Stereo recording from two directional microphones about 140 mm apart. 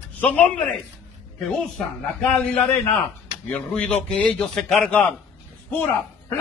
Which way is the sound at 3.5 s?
10° left (ahead or behind).